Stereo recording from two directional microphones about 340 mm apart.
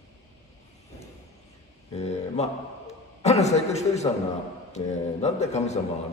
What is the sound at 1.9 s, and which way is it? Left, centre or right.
A man's voice, centre.